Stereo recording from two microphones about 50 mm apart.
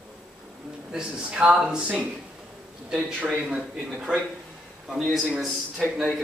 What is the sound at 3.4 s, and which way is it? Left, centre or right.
Speech, centre.